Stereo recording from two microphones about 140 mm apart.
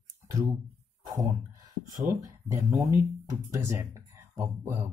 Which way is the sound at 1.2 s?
20° right (ahead or behind).